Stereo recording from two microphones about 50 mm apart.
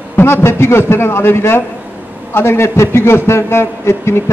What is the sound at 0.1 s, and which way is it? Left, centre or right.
A man's voice, left.